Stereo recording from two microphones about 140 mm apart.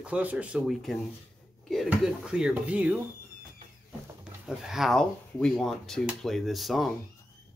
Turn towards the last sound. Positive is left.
turn(degrees=0)  # may be behind; listen again after turning